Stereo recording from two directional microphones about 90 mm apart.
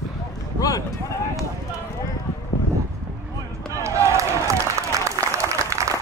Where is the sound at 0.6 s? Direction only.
40° left (ahead or behind).